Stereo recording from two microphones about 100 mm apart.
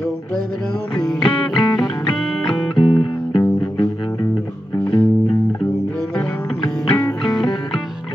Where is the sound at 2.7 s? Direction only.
50° left (ahead or behind).